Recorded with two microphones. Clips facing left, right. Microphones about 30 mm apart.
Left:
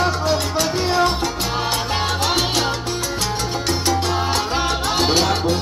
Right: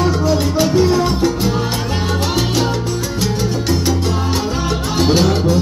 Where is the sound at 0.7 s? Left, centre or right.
Left.